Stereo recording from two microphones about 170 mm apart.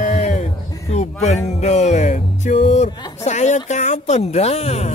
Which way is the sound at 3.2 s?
40° left (ahead or behind).